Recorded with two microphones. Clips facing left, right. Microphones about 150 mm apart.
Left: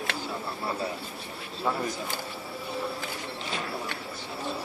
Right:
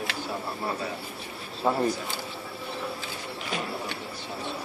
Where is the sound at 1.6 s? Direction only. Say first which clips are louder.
Right 4 dB; 35° right (ahead or behind).